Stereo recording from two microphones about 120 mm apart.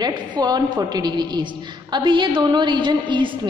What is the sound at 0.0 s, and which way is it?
A woman's voice, 35° right (ahead or behind).